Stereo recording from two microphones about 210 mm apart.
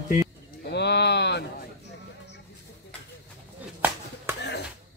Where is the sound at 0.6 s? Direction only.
55° left (ahead or behind).